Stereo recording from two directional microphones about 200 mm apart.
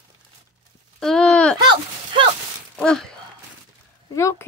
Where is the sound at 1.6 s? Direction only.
20° right (ahead or behind).